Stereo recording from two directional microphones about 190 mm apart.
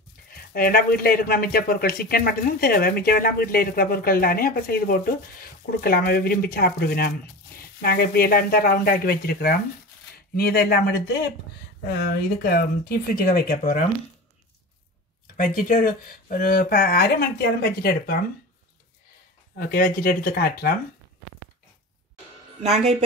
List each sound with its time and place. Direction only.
0.3 s speech: 50° left (ahead or behind)
15.3 s speech: 45° left (ahead or behind)
19.5 s speech: 50° left (ahead or behind)
22.6 s speech: 35° right (ahead or behind)